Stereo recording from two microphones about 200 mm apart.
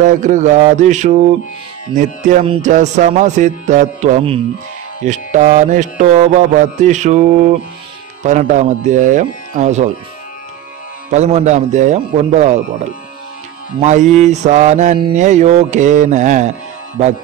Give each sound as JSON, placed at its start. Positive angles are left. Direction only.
{"t": 0.0, "sound": "music", "side_deg": -40}
{"t": 11.1, "sound": "music", "side_deg": -35}
{"t": 13.7, "sound": "music", "side_deg": -35}